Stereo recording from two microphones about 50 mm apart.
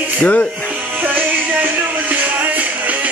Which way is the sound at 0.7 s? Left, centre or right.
Right.